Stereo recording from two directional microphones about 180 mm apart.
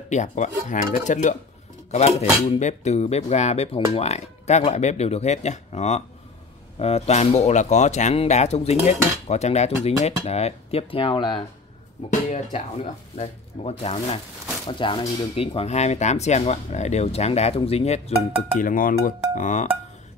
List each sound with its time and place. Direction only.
0.1 s speech: 40° left (ahead or behind); by 11.4 s 25° left (ahead or behind)
12.1 s speech: 40° left (ahead or behind)
18.6 s speech: 50° left (ahead or behind)